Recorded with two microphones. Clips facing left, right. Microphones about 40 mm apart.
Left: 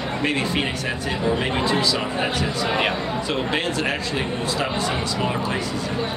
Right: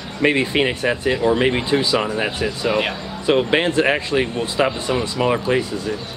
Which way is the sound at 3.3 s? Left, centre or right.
Right.